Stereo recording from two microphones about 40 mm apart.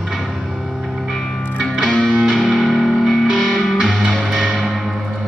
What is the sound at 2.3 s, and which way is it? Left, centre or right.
Music, centre.